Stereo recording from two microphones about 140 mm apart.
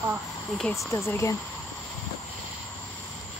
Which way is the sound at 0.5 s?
Centre (ahead or behind).